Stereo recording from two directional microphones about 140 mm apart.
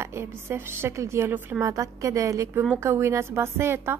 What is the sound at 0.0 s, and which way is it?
A woman's voice, 20° right (ahead or behind).